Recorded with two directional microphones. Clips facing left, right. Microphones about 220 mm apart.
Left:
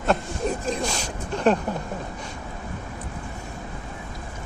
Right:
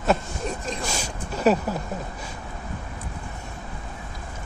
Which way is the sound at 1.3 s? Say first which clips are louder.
Even; 5° right (ahead or behind).